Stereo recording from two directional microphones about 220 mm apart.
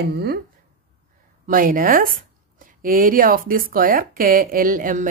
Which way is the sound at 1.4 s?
40° right (ahead or behind).